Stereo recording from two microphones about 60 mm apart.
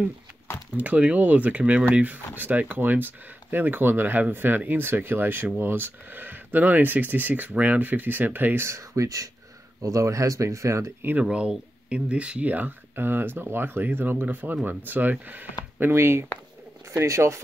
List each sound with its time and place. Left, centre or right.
0.7 s speech: right
8.6 s speech: right
11.1 s speech: centre
15.8 s speech: right